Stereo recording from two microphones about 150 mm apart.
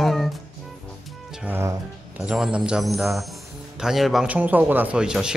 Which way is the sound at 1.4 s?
15° right (ahead or behind).